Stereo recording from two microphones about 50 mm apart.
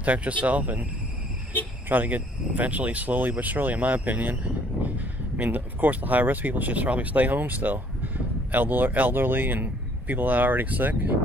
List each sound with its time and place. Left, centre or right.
0.0 s speech: right
1.9 s speech: right